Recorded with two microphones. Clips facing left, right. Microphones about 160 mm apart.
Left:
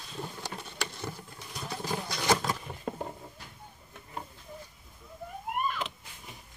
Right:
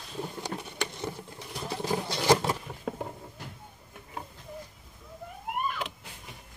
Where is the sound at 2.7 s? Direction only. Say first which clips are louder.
Right 1 dB; centre (ahead or behind).